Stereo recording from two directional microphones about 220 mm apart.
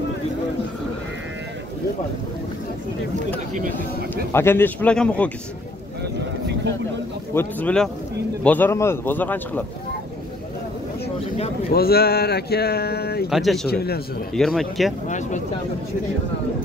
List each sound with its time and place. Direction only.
4.3 s speech: 10° left (ahead or behind)
7.3 s speech: 5° left (ahead or behind)
11.7 s speech: 45° left (ahead or behind)
13.3 s speech: centre (ahead or behind)
13.7 s speech: 45° left (ahead or behind)
14.3 s speech: centre (ahead or behind)
15.0 s speech: 35° left (ahead or behind)